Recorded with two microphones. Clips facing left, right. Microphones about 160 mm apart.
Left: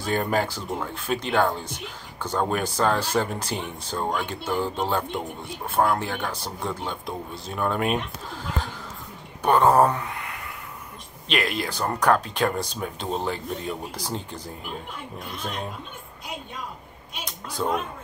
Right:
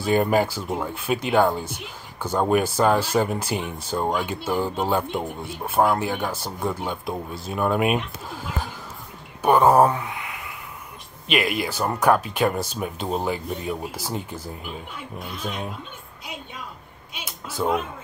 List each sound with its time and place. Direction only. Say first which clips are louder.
0.0 s speech: right 5 dB; 10° right (ahead or behind)
17.1 s speech: even; 5° right (ahead or behind)